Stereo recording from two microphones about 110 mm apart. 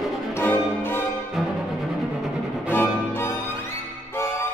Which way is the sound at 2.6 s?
20° left (ahead or behind).